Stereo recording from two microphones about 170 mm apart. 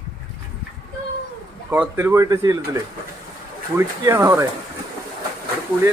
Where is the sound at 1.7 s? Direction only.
10° right (ahead or behind).